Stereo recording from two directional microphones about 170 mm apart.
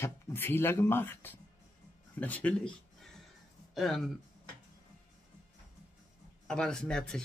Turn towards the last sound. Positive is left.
turn(degrees=5)  # may be behind; listen again after turning